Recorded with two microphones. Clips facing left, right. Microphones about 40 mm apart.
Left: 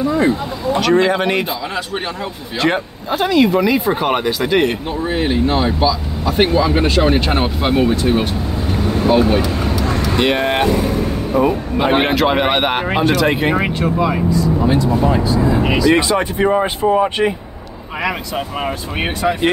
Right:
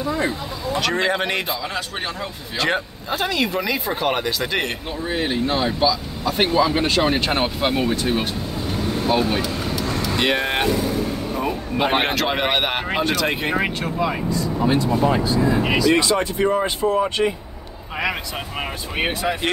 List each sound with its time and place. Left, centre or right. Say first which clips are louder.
0.0 s speech: left 7 dB; centre
5.1 s speech: left 5 dB; centre
10.1 s speech: left 5 dB; centre
15.6 s speech: left 4 dB; centre
15.9 s speech: left 4 dB; left
18.0 s speech: left 5 dB; centre